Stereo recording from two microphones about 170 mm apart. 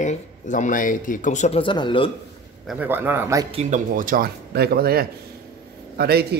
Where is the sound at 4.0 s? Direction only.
55° right (ahead or behind).